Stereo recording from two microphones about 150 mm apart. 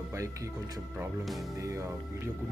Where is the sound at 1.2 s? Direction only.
Centre (ahead or behind).